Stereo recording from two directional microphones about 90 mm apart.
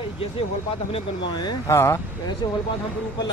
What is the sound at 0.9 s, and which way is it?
Speech, 90° left.